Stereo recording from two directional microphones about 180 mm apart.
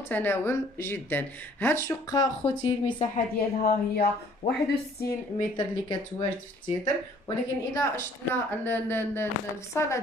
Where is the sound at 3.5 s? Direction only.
45° left (ahead or behind).